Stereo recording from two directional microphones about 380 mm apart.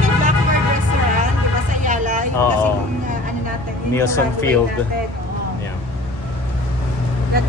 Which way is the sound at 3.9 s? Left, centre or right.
Centre.